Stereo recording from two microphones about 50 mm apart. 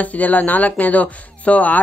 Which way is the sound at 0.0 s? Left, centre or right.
Left.